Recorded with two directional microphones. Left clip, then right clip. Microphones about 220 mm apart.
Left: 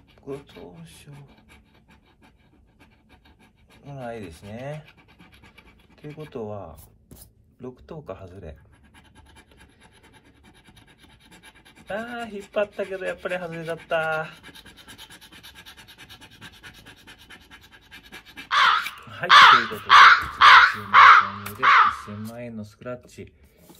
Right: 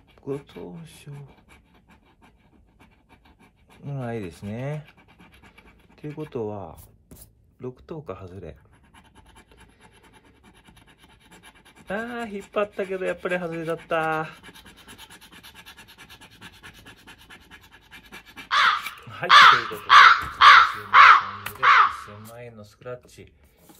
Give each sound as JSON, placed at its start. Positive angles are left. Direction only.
{"t": 0.3, "sound": "speech", "side_deg": -30}
{"t": 3.9, "sound": "speech", "side_deg": -30}
{"t": 5.9, "sound": "speech", "side_deg": -30}
{"t": 7.6, "sound": "speech", "side_deg": -30}
{"t": 11.7, "sound": "speech", "side_deg": -25}
{"t": 15.6, "sound": "a sound", "side_deg": -30}
{"t": 18.5, "sound": "a sound", "side_deg": 0}
{"t": 19.2, "sound": "crow", "side_deg": 0}